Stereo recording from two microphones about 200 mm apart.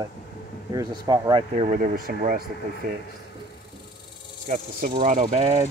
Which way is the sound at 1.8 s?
45° right (ahead or behind).